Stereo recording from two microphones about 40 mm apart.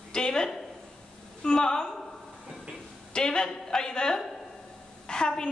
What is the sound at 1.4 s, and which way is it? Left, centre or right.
Speech, centre.